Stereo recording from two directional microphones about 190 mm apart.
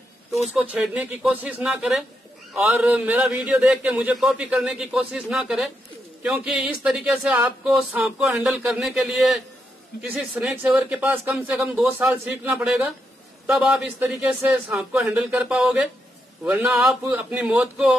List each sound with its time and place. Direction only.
0.6 s a man's voice: 5° right (ahead or behind)